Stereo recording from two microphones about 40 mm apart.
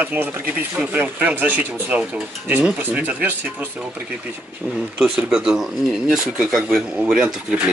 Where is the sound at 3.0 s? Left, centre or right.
Right.